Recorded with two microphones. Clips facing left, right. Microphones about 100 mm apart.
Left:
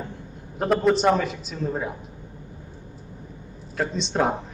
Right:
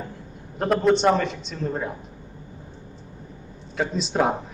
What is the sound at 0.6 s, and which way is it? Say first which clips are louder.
A man's voice: right 1 dB; centre (ahead or behind).